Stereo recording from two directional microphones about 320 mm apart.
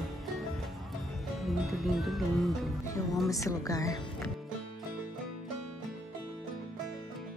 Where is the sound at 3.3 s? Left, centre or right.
Centre.